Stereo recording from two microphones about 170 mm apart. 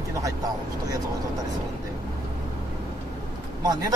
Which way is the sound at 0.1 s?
20° right (ahead or behind).